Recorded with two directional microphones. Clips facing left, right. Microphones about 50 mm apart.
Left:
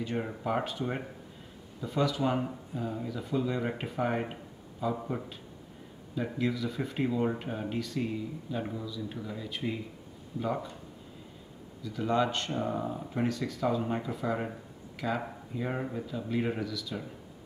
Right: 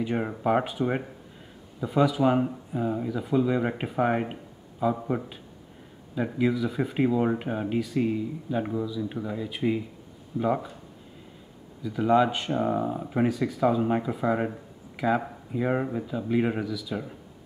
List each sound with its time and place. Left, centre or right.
0.0 s speech: centre
11.8 s speech: centre